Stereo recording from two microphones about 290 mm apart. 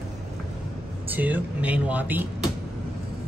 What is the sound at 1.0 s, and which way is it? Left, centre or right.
Speech, centre.